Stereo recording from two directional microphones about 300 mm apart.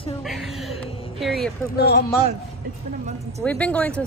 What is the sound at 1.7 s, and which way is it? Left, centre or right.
Speech, left.